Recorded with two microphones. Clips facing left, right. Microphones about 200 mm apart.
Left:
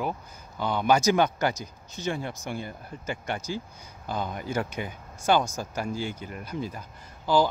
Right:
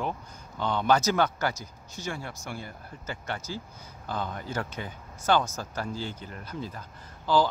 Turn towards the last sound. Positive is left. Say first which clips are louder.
# left 1 dB
turn(degrees=15)  # may be behind; listen again after turning